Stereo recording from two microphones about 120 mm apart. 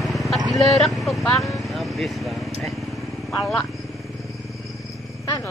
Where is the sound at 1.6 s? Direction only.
Centre (ahead or behind).